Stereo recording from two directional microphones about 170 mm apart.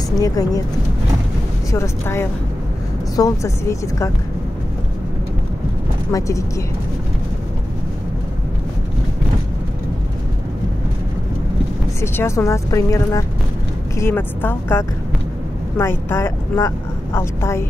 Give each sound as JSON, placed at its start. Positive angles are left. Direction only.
{"t": 0.2, "sound": "a woman's voice", "side_deg": 20}
{"t": 1.7, "sound": "a woman's voice", "side_deg": 15}
{"t": 6.1, "sound": "speech", "side_deg": 20}
{"t": 12.0, "sound": "speech", "side_deg": 15}